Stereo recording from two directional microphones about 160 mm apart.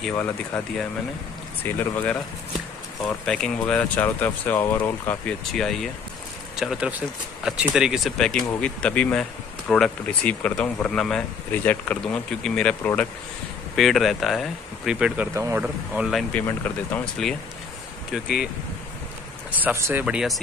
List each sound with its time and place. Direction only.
1.6 s speech: 10° left (ahead or behind)
16.4 s speech: 10° left (ahead or behind)
19.6 s speech: 15° right (ahead or behind)